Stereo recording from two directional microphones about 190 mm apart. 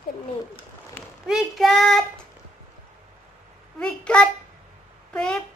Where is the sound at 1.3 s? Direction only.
Centre (ahead or behind).